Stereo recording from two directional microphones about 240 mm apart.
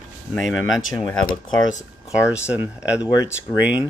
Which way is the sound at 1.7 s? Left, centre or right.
Left.